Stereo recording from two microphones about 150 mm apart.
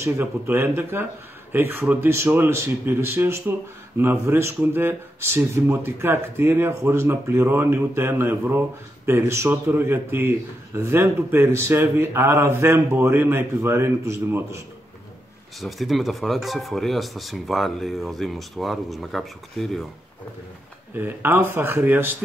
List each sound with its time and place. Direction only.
0.0 s speech: 15° right (ahead or behind)
15.6 s speech: centre (ahead or behind)
20.9 s speech: 15° right (ahead or behind)